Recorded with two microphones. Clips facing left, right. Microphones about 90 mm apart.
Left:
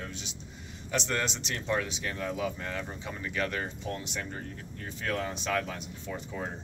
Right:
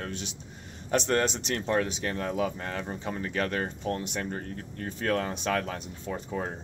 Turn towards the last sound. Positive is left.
turn(degrees=-40)  # may be behind; listen again after turning